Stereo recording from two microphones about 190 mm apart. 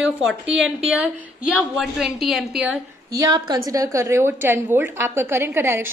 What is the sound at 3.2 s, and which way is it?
A woman's voice, 20° right (ahead or behind).